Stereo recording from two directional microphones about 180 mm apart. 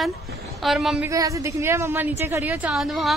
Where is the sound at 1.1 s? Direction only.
20° right (ahead or behind); by 3.1 s centre (ahead or behind).